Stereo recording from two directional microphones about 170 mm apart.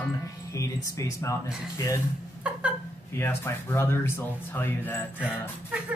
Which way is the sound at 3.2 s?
15° left (ahead or behind).